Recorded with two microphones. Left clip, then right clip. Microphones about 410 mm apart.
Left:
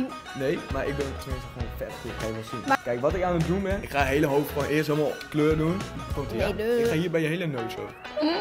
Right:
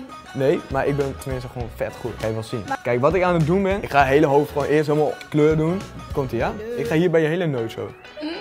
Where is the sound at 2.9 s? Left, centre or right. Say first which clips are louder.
Right 7 dB; right.